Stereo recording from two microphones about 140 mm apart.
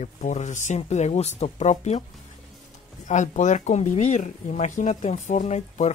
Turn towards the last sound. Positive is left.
turn(degrees=50)  # may be behind; listen again after turning